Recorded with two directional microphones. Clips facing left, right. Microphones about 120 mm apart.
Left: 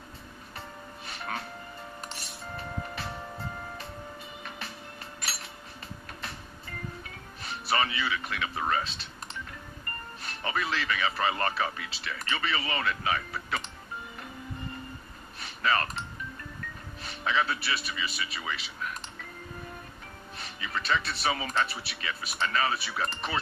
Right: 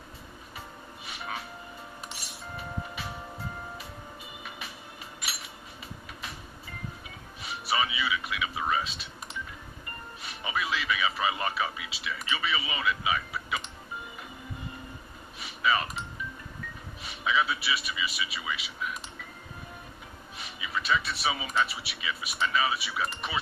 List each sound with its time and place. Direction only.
1.1 s music: 5° right (ahead or behind)
7.4 s speech: 5° right (ahead or behind)
15.4 s a sound: 5° right (ahead or behind)
17.0 s a man's voice: 5° right (ahead or behind)
20.3 s music: 5° right (ahead or behind)
21.5 s speech: 5° right (ahead or behind)